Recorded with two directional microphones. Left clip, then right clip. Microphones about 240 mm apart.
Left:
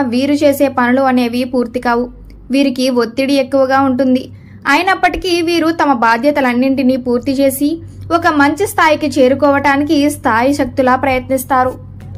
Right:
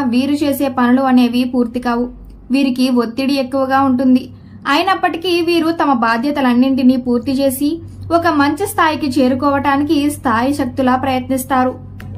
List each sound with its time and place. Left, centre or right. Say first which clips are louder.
0.0 s a woman's voice: left 4 dB; centre